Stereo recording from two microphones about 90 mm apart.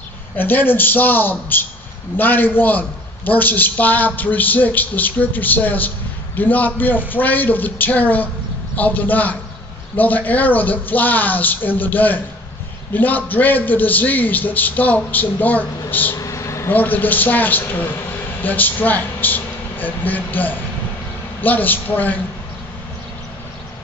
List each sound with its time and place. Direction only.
0.4 s a man's voice: 20° left (ahead or behind)
16.2 s a sound: 35° left (ahead or behind)
16.7 s a man's voice: 20° left (ahead or behind)